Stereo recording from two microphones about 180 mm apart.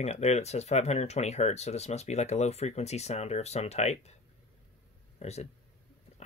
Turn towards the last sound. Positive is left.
turn(degrees=35)  # may be behind; listen again after turning